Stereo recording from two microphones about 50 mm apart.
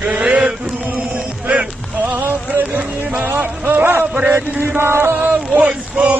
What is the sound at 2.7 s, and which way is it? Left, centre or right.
Music, right.